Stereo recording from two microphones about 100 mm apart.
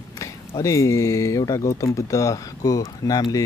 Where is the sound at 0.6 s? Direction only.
30° left (ahead or behind).